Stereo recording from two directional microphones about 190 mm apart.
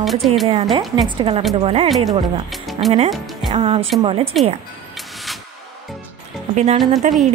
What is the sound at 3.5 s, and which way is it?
Speech, 35° right (ahead or behind).